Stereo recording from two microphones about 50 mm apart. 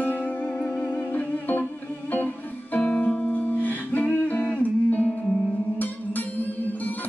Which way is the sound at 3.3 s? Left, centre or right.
Left.